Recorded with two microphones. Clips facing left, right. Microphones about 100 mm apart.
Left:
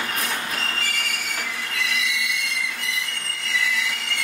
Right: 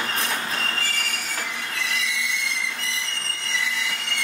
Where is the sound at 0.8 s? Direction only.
35° right (ahead or behind).